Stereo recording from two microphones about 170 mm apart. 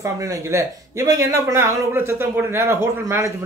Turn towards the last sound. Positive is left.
turn(degrees=-15)  # may be behind; listen again after turning